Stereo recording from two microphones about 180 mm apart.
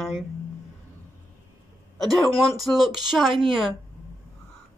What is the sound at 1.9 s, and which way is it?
Speech, centre (ahead or behind).